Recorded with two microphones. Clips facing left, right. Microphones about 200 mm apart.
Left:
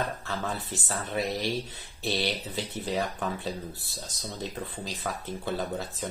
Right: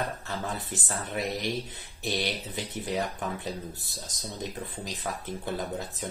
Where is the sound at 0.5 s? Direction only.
15° right (ahead or behind).